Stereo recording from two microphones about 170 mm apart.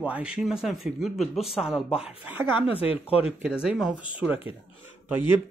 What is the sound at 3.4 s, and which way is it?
Speech, 5° right (ahead or behind).